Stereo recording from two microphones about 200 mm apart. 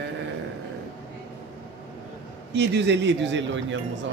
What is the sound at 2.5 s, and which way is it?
A man's voice, 60° right (ahead or behind).